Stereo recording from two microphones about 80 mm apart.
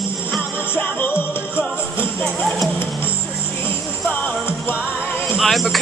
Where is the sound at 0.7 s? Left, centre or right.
Left.